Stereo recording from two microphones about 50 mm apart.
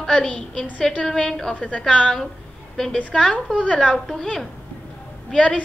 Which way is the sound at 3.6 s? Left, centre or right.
Left.